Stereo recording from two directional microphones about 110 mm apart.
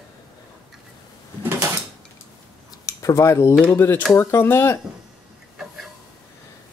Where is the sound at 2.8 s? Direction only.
30° left (ahead or behind).